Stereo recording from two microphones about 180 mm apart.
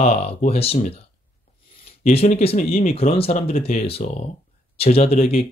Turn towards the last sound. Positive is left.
turn(degrees=35)  # may be behind; listen again after turning